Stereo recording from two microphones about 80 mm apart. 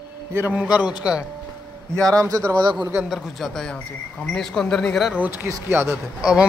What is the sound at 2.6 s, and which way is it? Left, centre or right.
Speech, right.